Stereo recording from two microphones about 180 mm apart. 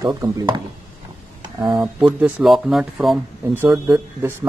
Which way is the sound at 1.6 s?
25° right (ahead or behind).